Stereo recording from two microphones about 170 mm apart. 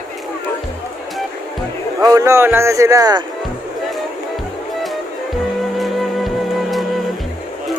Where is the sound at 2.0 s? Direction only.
20° right (ahead or behind).